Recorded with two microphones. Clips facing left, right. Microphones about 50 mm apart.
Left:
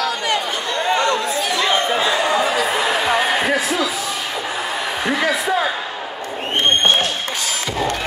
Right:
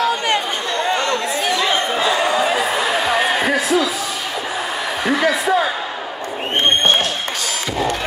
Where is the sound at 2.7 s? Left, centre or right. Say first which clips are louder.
Even; centre.